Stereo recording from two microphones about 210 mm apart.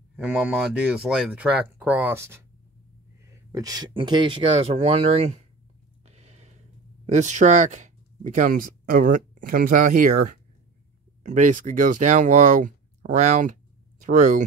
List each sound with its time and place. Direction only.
0.1 s speech: 5° right (ahead or behind); by 5.4 s 30° right (ahead or behind)
6.0 s a sound: 30° right (ahead or behind)
7.1 s speech: 35° right (ahead or behind)